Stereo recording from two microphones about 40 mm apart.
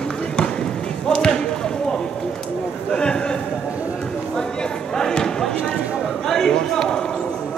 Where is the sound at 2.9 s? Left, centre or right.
Left.